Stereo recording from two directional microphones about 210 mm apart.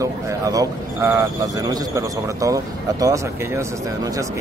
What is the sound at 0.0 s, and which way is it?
Speech, 15° right (ahead or behind).